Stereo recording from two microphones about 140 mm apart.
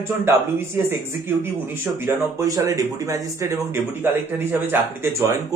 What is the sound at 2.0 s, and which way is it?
Speech, 25° right (ahead or behind).